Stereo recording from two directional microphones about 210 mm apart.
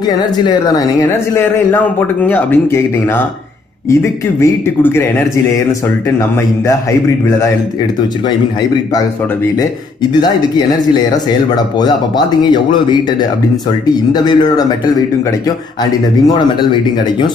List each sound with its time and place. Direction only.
1.7 s speech: 10° left (ahead or behind)
11.1 s speech: 20° left (ahead or behind)
14.1 s speech: 20° left (ahead or behind)